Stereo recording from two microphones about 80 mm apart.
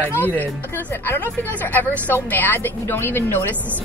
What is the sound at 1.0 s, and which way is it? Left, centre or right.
A woman's voice, left.